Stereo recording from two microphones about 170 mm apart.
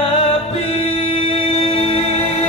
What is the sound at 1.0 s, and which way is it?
Music, 35° left (ahead or behind).